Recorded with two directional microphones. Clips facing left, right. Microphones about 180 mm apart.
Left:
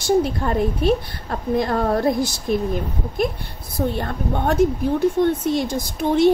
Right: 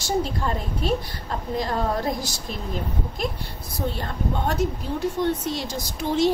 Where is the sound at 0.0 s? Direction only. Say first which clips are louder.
Left 6 dB; 55° left (ahead or behind).